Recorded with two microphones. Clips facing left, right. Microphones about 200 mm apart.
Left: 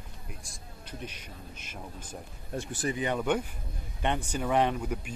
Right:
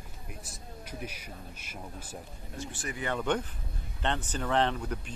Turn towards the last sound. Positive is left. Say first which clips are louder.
# left 2 dB
turn(degrees=10)  # may be behind; listen again after turning